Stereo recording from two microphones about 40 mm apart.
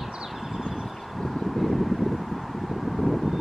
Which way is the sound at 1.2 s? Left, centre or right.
Centre.